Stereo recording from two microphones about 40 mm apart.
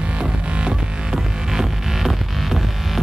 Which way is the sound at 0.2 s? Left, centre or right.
Centre.